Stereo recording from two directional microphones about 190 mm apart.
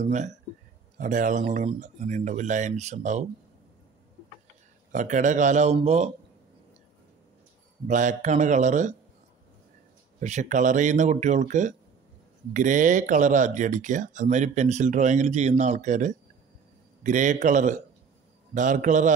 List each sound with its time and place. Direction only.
0.0 s speech: 40° right (ahead or behind)
4.9 s speech: 40° right (ahead or behind)
7.9 s speech: 40° right (ahead or behind)
10.2 s speech: 40° right (ahead or behind)